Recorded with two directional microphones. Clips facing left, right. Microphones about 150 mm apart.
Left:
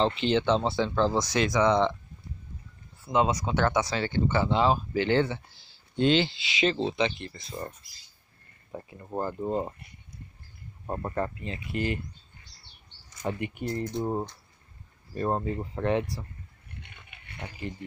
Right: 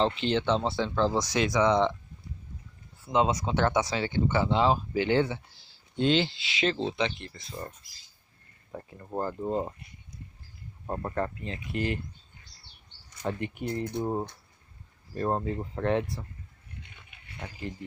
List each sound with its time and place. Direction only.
0.0 s speech: centre (ahead or behind)
3.1 s speech: 25° right (ahead or behind); by 7.7 s 15° left (ahead or behind)
8.7 s speech: 5° left (ahead or behind)
10.9 s speech: 5° left (ahead or behind)
13.2 s speech: 10° left (ahead or behind)
13.6 s speech: centre (ahead or behind)
15.1 s speech: 5° left (ahead or behind)
16.8 s pig: 65° left (ahead or behind)
17.4 s speech: 5° left (ahead or behind)